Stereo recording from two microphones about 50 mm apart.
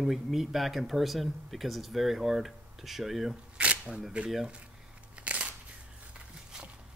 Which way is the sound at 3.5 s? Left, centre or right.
Right.